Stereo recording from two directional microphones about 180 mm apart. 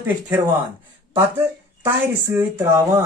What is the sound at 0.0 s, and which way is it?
Speech, 15° right (ahead or behind).